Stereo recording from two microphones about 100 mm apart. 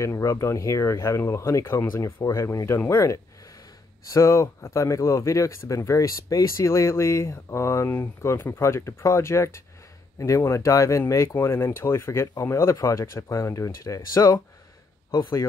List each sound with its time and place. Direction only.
0.0 s speech: 30° left (ahead or behind)